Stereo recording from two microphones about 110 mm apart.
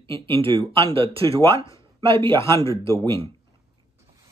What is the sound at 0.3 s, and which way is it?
Speech, 55° right (ahead or behind).